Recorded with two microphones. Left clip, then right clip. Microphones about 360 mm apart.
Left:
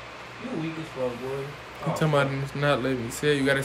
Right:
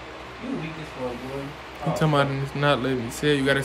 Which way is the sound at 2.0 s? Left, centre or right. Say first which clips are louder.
Right 2 dB; centre.